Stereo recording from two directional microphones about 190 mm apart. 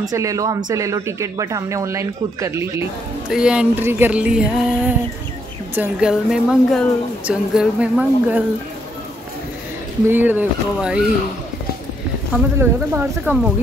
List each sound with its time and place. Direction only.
0.0 s speech: 15° right (ahead or behind)
3.3 s speech: 5° right (ahead or behind)
10.0 s speech: 10° right (ahead or behind)
12.5 s speech: 10° right (ahead or behind)